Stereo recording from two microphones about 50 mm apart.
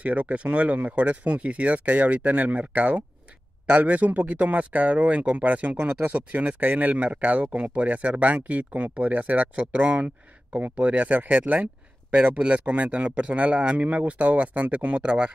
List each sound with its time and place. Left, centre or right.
0.0 s speech: right